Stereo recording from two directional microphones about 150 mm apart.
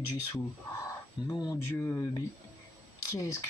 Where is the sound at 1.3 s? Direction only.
25° left (ahead or behind).